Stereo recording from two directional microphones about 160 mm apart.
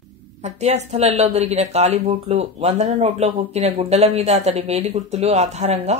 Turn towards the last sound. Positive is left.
turn(degrees=-40)  # may be behind; listen again after turning